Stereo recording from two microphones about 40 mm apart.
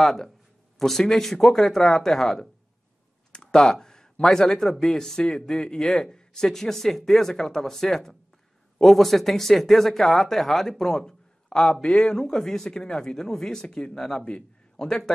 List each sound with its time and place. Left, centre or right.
0.0 s a man's voice: centre; by 14.9 s left
14.9 s speech: centre